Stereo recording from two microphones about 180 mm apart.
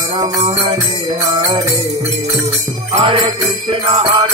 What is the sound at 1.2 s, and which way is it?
Music, 35° right (ahead or behind).